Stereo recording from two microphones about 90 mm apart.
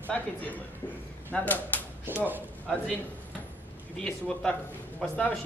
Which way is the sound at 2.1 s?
20° right (ahead or behind).